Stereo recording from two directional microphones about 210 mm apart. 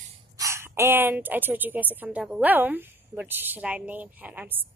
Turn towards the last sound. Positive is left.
turn(degrees=-10)  # may be behind; listen again after turning